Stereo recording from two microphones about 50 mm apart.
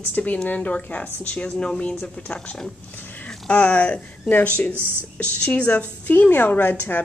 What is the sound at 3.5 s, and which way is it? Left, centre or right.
A woman's voice, left.